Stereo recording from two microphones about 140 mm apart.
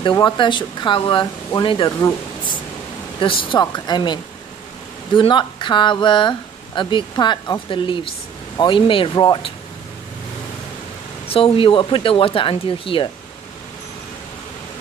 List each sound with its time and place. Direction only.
0.0 s speech: 35° left (ahead or behind)
1.9 s speech: 25° left (ahead or behind)
3.2 s speech: 40° left (ahead or behind)
11.2 s speech: 45° left (ahead or behind)